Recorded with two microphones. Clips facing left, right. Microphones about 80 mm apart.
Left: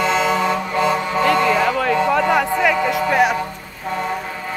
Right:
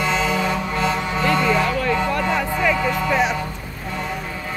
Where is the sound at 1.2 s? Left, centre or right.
Left.